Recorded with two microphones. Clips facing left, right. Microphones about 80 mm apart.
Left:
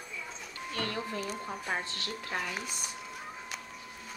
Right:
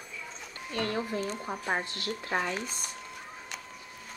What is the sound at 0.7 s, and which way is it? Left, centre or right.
Speech, right.